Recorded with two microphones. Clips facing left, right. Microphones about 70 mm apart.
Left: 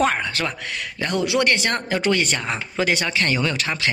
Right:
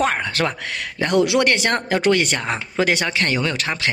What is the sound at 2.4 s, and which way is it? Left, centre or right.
Speech, right.